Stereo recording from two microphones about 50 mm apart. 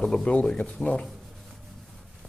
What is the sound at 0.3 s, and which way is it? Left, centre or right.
Speech, left.